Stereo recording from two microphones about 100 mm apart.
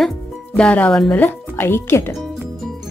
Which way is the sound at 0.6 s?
15° left (ahead or behind).